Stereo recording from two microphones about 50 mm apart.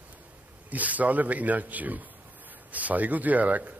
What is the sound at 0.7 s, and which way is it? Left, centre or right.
Speech, right.